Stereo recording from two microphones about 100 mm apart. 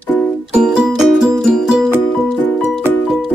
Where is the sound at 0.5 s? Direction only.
5° right (ahead or behind).